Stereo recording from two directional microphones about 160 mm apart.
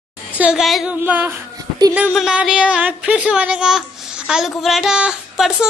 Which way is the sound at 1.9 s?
5° right (ahead or behind).